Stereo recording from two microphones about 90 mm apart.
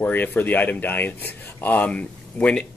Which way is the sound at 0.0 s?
20° left (ahead or behind).